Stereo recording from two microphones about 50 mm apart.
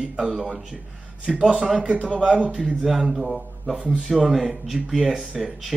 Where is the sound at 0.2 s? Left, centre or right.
Centre.